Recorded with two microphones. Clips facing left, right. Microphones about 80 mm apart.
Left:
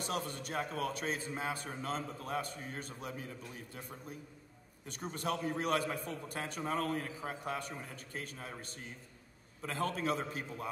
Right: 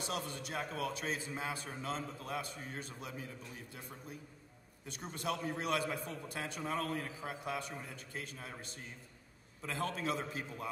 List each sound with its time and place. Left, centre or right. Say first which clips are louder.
0.0 s a man's voice: left 2 dB; left
4.8 s a man's voice: left 2 dB; left